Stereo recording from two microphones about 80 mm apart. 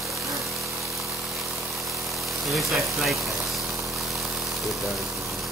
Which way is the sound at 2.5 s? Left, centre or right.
Centre.